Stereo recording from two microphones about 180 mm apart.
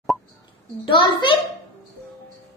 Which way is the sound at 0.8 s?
30° left (ahead or behind).